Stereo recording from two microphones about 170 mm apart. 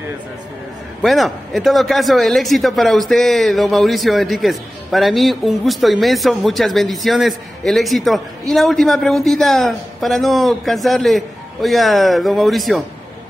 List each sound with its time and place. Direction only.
1.0 s a man's voice: centre (ahead or behind)